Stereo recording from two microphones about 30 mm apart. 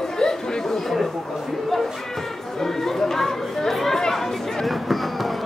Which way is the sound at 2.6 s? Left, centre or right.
Centre.